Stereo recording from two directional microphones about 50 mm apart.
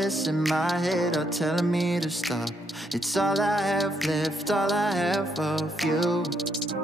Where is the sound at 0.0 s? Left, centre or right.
Centre.